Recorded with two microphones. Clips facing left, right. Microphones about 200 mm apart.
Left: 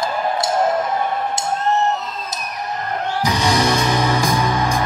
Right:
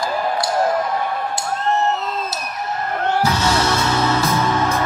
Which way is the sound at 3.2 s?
15° left (ahead or behind).